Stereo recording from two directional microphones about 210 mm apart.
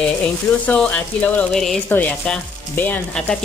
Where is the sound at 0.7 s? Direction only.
5° left (ahead or behind).